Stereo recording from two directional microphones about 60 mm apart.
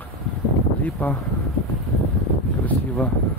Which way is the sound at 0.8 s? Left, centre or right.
Left.